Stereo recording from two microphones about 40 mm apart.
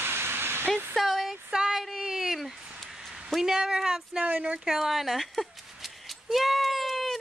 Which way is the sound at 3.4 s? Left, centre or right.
Centre.